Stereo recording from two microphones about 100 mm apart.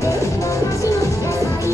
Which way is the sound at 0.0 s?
30° left (ahead or behind).